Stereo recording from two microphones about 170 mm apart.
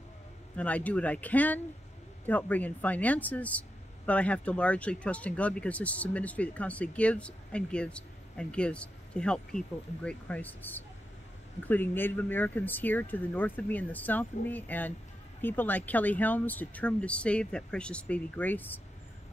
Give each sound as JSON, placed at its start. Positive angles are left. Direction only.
{"t": 0.6, "sound": "speech", "side_deg": 10}